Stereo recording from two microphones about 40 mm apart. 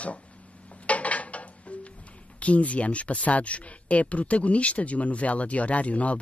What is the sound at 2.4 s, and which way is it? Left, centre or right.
Speech, left.